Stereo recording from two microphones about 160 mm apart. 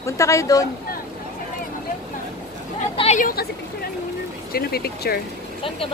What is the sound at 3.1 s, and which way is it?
Speech, 60° left (ahead or behind).